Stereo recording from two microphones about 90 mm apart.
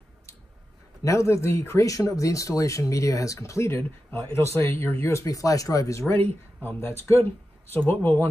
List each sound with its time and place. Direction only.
1.0 s speech: 35° left (ahead or behind)
6.2 s speech: 20° left (ahead or behind)